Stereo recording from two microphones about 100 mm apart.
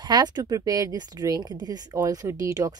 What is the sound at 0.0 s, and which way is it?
Speech, 45° right (ahead or behind).